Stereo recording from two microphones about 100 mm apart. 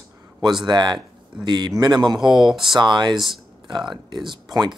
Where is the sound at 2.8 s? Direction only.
50° right (ahead or behind).